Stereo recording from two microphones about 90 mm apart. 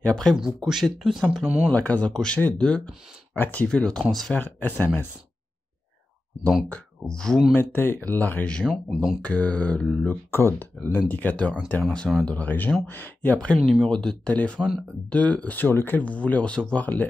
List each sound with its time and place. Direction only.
0.0 s speech: 5° left (ahead or behind)
1.4 s speech: 15° right (ahead or behind)
1.7 s speech: 15° left (ahead or behind)
4.3 s speech: 20° left (ahead or behind)
6.7 s speech: 10° left (ahead or behind)
7.5 s speech: 25° left (ahead or behind)
8.6 s speech: centre (ahead or behind)
9.2 s speech: 15° left (ahead or behind)
10.3 s speech: 25° left (ahead or behind)